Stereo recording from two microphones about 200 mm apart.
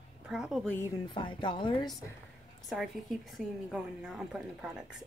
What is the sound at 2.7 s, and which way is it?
A woman's voice, centre (ahead or behind).